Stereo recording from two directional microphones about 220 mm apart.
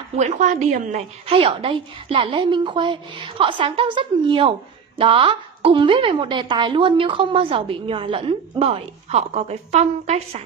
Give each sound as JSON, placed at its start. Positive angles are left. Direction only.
{"t": 0.2, "sound": "a woman's voice", "side_deg": -35}